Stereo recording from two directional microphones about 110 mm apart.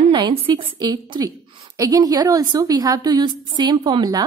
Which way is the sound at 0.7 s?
40° right (ahead or behind).